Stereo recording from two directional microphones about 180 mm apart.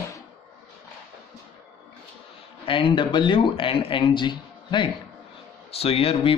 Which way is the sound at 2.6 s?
25° left (ahead or behind).